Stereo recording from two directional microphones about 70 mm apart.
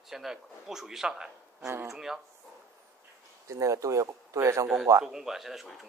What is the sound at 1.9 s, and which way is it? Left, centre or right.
Speech, centre.